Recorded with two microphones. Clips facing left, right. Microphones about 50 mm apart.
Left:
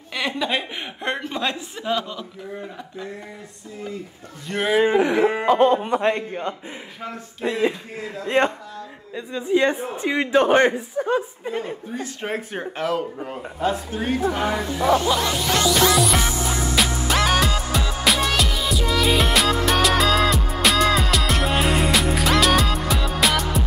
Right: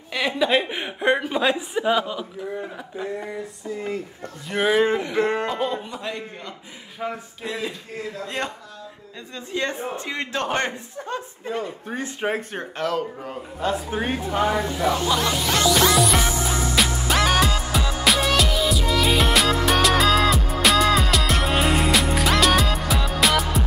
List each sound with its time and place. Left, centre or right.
0.1 s a woman's voice: centre
4.5 s a man's voice: centre
5.5 s speech: left
5.8 s a man's voice: left
7.4 s a sound: left
8.3 s a man's voice: left
9.1 s a man's voice: centre
13.8 s a woman's voice: right
15.0 s music: centre